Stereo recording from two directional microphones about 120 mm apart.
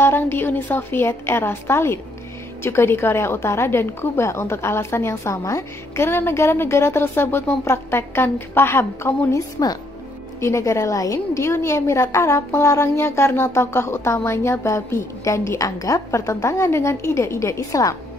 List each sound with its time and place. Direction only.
0.0 s a woman's voice: 20° left (ahead or behind)